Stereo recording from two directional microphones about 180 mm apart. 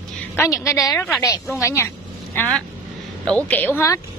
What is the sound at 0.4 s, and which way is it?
A woman's voice, 15° left (ahead or behind).